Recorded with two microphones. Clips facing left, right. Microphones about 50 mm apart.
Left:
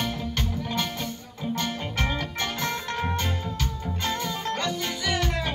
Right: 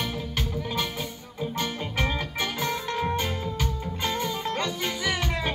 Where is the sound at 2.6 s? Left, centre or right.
Centre.